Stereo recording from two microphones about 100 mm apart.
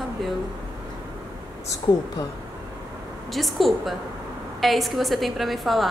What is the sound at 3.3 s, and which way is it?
A woman's voice, centre (ahead or behind).